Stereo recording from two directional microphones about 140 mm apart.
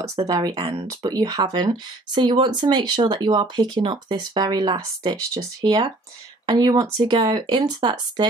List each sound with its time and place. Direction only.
0.1 s speech: 30° right (ahead or behind)